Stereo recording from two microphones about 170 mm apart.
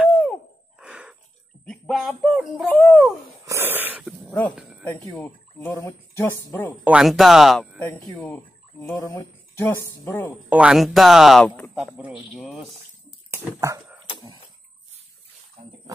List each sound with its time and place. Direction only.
0.7 s a sound: 5° right (ahead or behind)
1.7 s speech: centre (ahead or behind)
3.4 s wheeze: 15° right (ahead or behind)
4.3 s speech: 10° left (ahead or behind)
4.6 s music: centre (ahead or behind)
5.8 s speech: 15° left (ahead or behind)
6.8 s speech: 5° right (ahead or behind)
7.8 s speech: 15° left (ahead or behind)
10.5 s speech: 5° right (ahead or behind)
11.8 s speech: 5° right (ahead or behind)
13.3 s speech: 15° right (ahead or behind)